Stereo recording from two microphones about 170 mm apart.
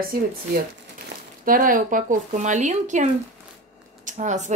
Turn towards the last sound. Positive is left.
turn(degrees=-45)  # may be behind; listen again after turning